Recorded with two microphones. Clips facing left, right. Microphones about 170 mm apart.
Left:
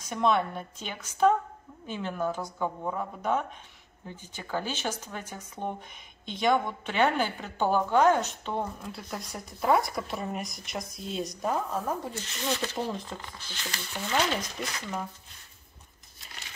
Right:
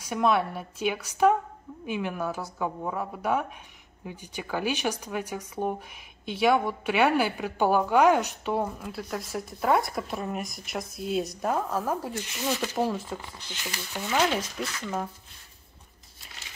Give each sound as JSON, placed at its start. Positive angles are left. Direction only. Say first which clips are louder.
{"t": 0.0, "sound": "speech", "louder": "right 1 dB", "side_deg": -5}
{"t": 13.2, "sound": "speech", "louder": "right 2 dB", "side_deg": -20}